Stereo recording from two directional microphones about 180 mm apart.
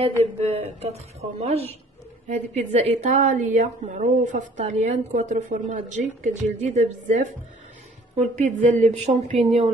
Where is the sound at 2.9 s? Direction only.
40° right (ahead or behind).